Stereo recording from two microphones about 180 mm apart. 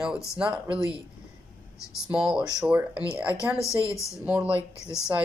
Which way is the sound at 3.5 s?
15° left (ahead or behind).